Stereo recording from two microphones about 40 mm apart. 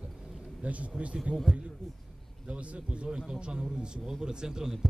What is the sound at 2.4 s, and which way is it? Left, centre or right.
A man's voice, right.